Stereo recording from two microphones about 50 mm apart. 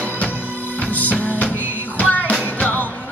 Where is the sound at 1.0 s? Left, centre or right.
Left.